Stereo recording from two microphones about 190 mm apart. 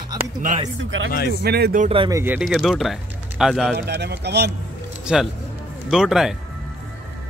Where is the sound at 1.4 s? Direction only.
55° right (ahead or behind).